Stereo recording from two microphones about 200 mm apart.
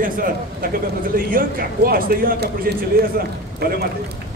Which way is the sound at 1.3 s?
45° right (ahead or behind).